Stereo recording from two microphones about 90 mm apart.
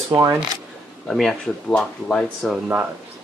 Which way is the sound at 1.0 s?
5° left (ahead or behind).